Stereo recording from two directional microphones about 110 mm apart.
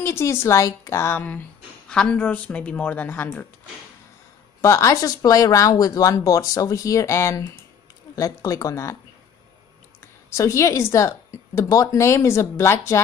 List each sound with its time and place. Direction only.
0.0 s speech: 25° left (ahead or behind)
1.1 s speech: 15° left (ahead or behind)
4.6 s speech: 25° left (ahead or behind)
10.3 s speech: 30° left (ahead or behind)